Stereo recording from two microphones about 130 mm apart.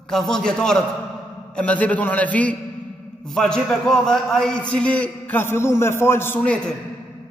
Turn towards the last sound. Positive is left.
turn(degrees=10)  # may be behind; listen again after turning